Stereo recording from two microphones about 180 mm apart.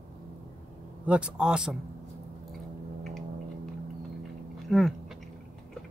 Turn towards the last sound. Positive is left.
turn(degrees=0)  # may be behind; listen again after turning